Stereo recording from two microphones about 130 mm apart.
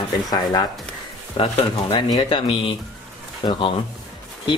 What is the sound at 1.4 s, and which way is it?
Speech, 45° left (ahead or behind).